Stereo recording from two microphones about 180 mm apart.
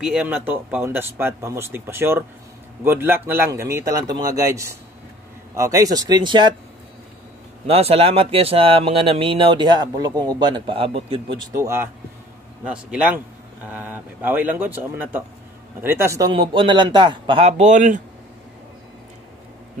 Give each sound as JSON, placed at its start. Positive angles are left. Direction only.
{"t": 0.0, "sound": "a man's voice", "side_deg": -5}
{"t": 7.6, "sound": "speech", "side_deg": -35}
{"t": 11.5, "sound": "a man's voice", "side_deg": -15}